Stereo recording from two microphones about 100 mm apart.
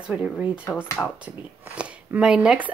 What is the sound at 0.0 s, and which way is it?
Speech, 5° right (ahead or behind).